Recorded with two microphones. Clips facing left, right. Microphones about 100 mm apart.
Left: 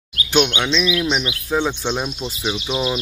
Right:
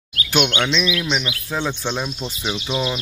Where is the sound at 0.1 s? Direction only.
25° left (ahead or behind).